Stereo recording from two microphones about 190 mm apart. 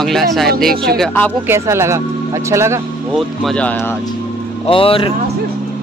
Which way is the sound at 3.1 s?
Centre (ahead or behind).